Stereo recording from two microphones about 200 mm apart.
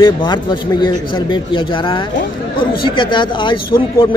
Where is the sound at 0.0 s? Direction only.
25° left (ahead or behind).